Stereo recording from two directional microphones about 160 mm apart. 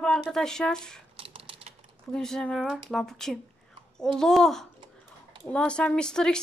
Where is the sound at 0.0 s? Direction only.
5° left (ahead or behind).